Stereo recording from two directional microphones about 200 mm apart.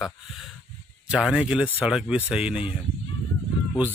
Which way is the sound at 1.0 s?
5° right (ahead or behind).